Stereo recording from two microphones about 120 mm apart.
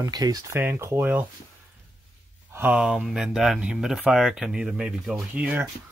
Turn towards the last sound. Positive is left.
turn(degrees=-10)  # may be behind; listen again after turning